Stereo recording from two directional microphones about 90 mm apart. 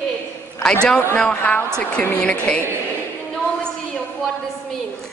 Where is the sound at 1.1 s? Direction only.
15° left (ahead or behind).